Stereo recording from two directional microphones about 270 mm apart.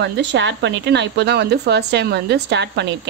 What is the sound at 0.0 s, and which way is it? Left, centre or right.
Speech, right.